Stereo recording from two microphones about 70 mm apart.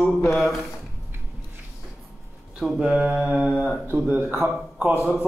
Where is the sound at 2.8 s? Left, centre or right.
Centre.